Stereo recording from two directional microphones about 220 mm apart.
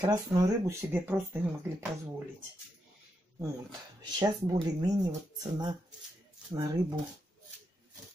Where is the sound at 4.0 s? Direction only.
20° right (ahead or behind).